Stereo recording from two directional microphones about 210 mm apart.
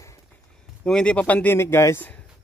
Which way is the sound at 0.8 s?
5° left (ahead or behind).